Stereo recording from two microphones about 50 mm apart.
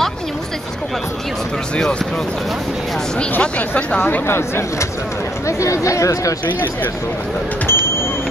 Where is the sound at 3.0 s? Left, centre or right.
Centre.